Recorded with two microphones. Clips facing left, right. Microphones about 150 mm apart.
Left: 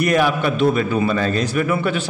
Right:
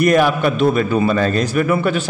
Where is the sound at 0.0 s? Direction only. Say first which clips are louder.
Right 3 dB; 45° right (ahead or behind).